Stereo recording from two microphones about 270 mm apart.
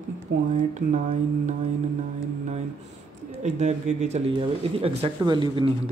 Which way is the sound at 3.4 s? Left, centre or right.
Right.